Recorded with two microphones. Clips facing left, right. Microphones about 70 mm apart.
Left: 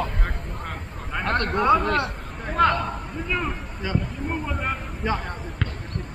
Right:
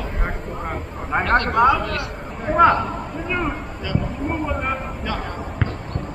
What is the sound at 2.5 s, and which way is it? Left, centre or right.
Speech, centre.